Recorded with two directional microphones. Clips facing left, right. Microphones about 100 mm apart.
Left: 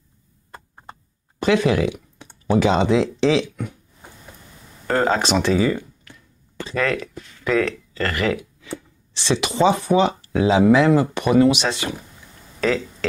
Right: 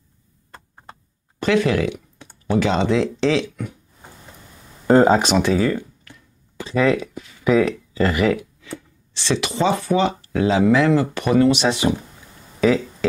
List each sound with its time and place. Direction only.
1.4 s speech: 15° left (ahead or behind)
4.8 s a sound: 20° right (ahead or behind)
5.2 s speech: 5° right (ahead or behind)
9.3 s speech: 20° left (ahead or behind)
11.6 s speech: 15° right (ahead or behind)
12.5 s a sound: 10° right (ahead or behind)